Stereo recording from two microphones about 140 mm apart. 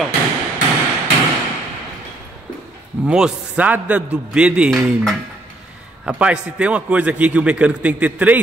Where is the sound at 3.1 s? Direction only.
5° right (ahead or behind).